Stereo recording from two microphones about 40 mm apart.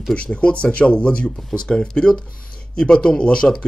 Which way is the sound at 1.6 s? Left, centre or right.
Left.